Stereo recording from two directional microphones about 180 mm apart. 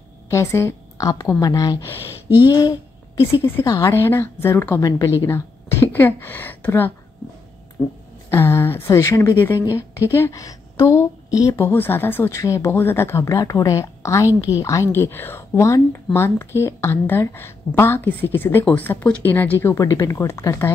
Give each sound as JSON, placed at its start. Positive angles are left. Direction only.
{"t": 0.3, "sound": "a woman's voice", "side_deg": 15}
{"t": 8.3, "sound": "a woman's voice", "side_deg": 15}